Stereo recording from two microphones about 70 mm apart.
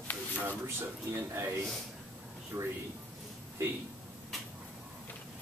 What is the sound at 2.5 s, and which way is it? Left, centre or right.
Speech, right.